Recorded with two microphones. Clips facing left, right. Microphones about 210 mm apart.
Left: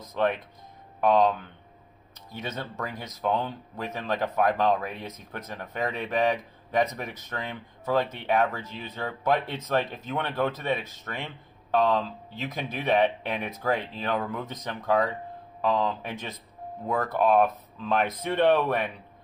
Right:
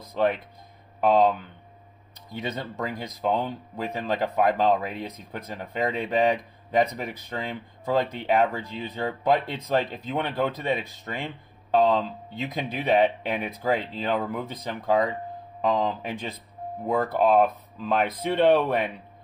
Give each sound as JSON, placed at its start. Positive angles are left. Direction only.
{"t": 0.0, "sound": "speech", "side_deg": -10}
{"t": 2.4, "sound": "speech", "side_deg": -15}